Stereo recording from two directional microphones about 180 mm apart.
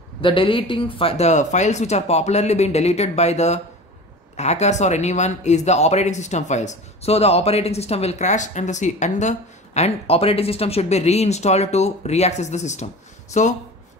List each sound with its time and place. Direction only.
0.2 s speech: 30° left (ahead or behind)